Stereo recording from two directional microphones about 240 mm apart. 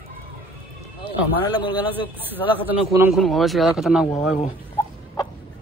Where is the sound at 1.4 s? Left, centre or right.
Centre.